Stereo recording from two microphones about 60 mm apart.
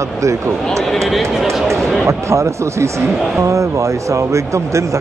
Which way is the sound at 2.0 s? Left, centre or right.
Right.